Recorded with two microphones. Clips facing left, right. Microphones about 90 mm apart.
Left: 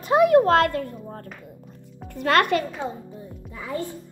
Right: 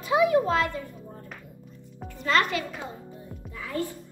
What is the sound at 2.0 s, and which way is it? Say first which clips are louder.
Speech: left 4 dB; 60° left (ahead or behind).